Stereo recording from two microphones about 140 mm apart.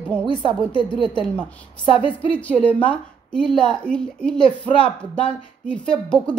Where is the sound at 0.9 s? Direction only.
40° right (ahead or behind).